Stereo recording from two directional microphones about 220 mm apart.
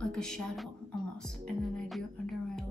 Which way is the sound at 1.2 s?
5° left (ahead or behind).